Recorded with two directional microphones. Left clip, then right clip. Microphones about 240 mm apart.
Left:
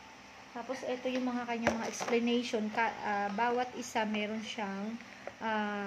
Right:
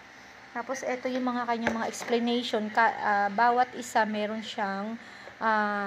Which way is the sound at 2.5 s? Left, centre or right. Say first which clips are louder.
Right 8 dB; centre.